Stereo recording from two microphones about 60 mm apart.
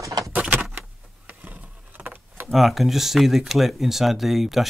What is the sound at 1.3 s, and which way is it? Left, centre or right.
Vehicle, right.